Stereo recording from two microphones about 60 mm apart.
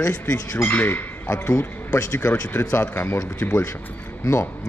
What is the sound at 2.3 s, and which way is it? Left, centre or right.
Speech, left.